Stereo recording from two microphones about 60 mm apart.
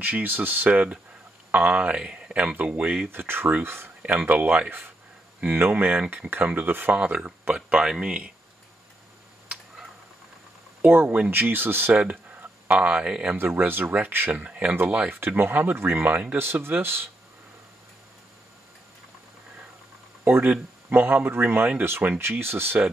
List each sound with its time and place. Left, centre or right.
0.0 s speech: right
2.0 s speech: centre
3.1 s speech: right
4.0 s speech: right
7.2 s speech: right
10.8 s speech: right
11.9 s speech: right
13.4 s speech: right
14.3 s speech: right
14.7 s speech: right
16.6 s speech: right
20.2 s speech: right